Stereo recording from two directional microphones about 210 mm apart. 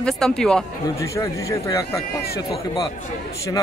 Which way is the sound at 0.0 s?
5° left (ahead or behind).